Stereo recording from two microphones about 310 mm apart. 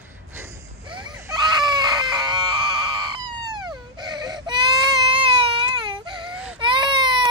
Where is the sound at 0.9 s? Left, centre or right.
Centre.